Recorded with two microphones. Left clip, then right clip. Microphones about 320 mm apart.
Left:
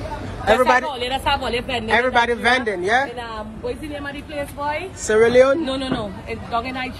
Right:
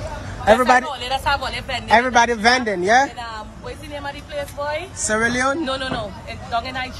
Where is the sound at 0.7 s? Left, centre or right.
Right.